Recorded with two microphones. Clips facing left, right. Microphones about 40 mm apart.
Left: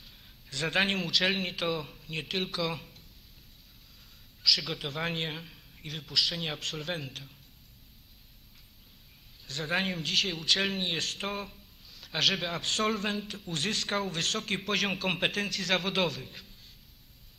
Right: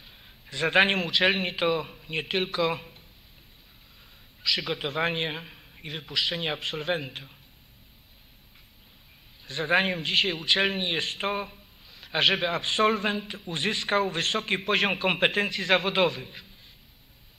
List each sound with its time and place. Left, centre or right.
0.0 s a man's voice: right
4.4 s a man's voice: right
9.5 s a man's voice: right